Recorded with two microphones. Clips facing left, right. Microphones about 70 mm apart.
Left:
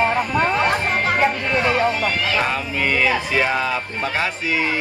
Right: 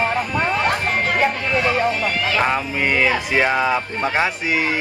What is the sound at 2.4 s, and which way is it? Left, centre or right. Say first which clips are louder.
Speech: right 2 dB; centre.